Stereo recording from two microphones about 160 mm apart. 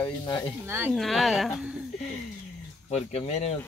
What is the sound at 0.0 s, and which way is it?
Speech, 25° left (ahead or behind).